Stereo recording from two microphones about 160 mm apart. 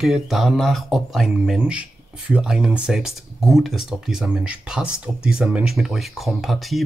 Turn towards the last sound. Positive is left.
turn(degrees=0)  # may be behind; listen again after turning